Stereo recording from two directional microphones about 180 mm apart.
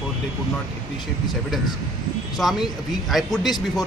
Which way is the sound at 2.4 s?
Centre (ahead or behind).